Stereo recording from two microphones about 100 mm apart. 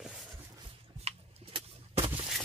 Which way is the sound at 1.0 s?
75° right (ahead or behind).